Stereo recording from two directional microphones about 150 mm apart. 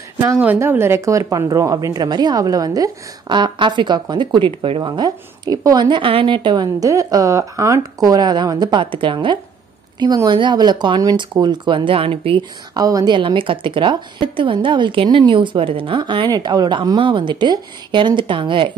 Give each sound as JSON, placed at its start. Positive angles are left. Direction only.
{"t": 0.4, "sound": "a woman's voice", "side_deg": -15}
{"t": 12.7, "sound": "a woman's voice", "side_deg": -25}